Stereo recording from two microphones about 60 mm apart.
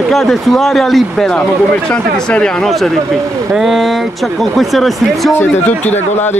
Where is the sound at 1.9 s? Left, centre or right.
Centre.